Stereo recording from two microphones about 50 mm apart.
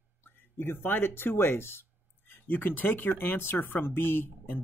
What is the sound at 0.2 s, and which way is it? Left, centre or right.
Speech, left.